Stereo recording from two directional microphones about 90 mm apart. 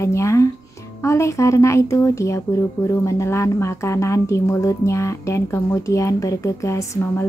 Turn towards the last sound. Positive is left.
turn(degrees=35)  # may be behind; listen again after turning